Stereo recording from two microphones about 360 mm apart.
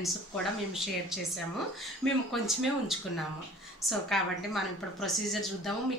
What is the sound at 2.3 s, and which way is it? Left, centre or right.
Speech, centre.